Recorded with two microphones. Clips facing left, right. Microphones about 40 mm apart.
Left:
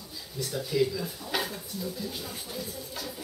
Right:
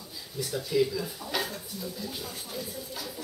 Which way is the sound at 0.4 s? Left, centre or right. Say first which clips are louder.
Right 1 dB; centre.